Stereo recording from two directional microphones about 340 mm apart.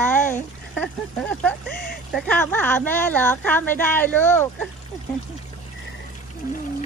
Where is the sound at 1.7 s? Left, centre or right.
Left.